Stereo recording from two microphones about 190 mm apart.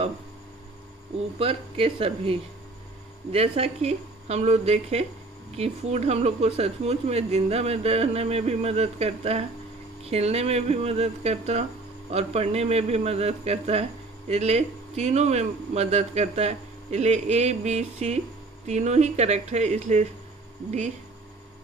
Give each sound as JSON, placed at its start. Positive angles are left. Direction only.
{"t": 1.4, "sound": "speech", "side_deg": -30}